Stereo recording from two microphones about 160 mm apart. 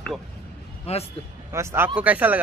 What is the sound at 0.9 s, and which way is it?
Speech, 40° left (ahead or behind).